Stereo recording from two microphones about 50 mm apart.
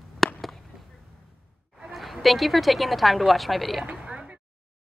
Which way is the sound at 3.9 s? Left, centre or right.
Right.